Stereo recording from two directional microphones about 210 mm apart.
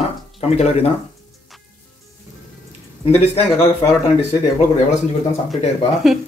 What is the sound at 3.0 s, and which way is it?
Speech, 30° left (ahead or behind).